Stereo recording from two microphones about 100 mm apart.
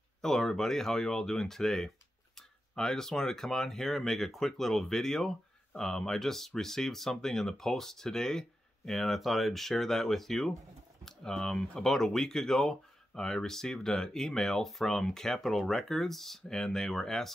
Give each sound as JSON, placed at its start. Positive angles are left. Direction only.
{"t": 0.2, "sound": "speech", "side_deg": 5}